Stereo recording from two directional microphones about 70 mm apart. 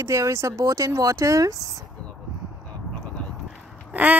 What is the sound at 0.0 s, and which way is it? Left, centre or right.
Speech, right.